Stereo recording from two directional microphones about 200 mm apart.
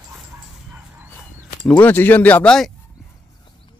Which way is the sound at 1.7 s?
10° left (ahead or behind).